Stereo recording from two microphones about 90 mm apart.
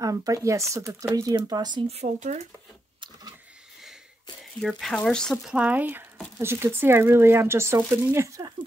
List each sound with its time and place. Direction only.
0.0 s speech: 40° right (ahead or behind)
4.6 s speech: centre (ahead or behind)
5.4 s speech: 10° right (ahead or behind); by 8.5 s 35° right (ahead or behind)